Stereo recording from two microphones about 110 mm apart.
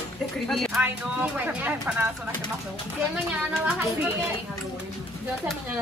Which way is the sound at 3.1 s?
10° right (ahead or behind).